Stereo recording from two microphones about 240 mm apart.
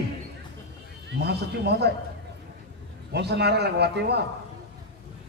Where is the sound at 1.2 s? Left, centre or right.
Right.